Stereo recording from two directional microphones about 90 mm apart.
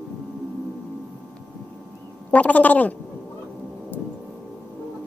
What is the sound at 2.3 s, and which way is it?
Speech, 15° left (ahead or behind).